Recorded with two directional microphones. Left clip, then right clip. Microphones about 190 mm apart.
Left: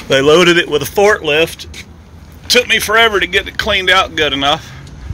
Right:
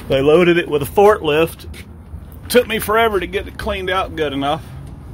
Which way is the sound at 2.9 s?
5° right (ahead or behind).